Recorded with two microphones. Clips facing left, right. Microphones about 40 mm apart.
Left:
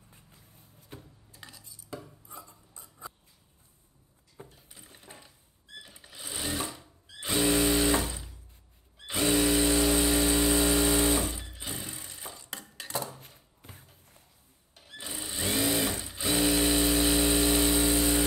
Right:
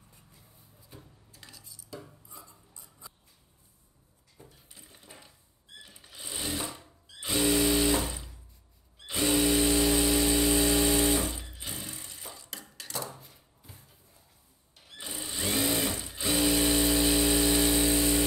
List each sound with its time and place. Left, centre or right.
1.3 s cutlery: centre
1.9 s dishes: left
4.4 s dishes: left
5.9 s sewing machine: centre
7.2 s a sound: centre
9.1 s power tool: centre
11.6 s a sound: centre
12.7 s dishes: centre
13.6 s a sound: left
15.0 s sewing machine: centre